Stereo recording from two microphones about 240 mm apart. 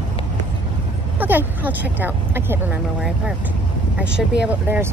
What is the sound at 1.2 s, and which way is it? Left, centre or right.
Speech, centre.